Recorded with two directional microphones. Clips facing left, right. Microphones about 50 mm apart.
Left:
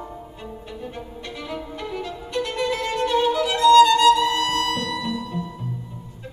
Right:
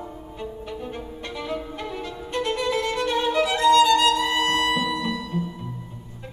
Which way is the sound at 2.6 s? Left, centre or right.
Left.